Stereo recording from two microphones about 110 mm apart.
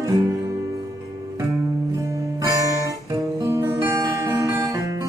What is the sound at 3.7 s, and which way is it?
Music, 25° right (ahead or behind).